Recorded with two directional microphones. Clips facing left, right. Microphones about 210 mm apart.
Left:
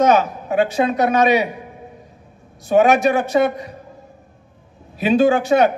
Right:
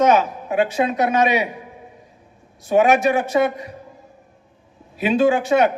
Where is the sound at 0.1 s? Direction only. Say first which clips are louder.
Left 1 dB; 35° left (ahead or behind).